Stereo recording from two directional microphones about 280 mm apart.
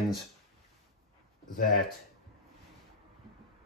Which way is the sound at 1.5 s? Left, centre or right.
Left.